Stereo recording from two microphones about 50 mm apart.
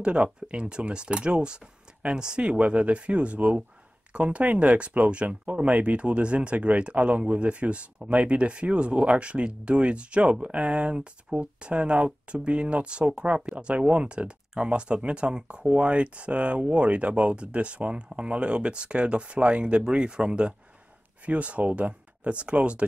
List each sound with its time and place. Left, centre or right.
0.0 s speech: right